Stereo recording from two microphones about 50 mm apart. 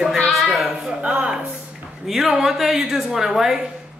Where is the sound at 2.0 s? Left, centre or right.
Centre.